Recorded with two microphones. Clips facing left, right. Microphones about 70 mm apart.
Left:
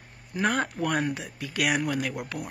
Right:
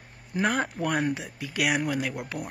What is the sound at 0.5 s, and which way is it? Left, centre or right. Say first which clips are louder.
Speech: left 1 dB; centre.